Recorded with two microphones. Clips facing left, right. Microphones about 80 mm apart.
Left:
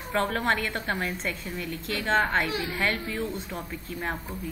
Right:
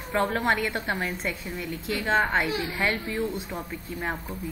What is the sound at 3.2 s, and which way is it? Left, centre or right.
A woman's voice, centre.